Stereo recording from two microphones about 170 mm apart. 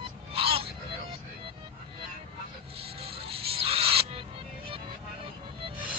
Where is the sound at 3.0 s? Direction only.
35° right (ahead or behind).